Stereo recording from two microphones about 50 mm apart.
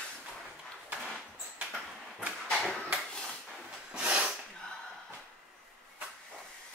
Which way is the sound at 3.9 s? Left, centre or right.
Centre.